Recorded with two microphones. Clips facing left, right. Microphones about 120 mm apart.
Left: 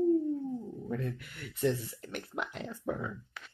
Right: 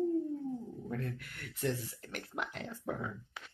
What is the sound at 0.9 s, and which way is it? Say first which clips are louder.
Speech: left 4 dB; 5° left (ahead or behind).